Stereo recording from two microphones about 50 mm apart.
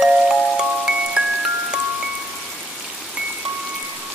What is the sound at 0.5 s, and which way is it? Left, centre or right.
Chime, centre.